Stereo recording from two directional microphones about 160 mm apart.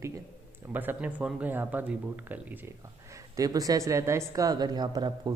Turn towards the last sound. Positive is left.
turn(degrees=-25)  # may be behind; listen again after turning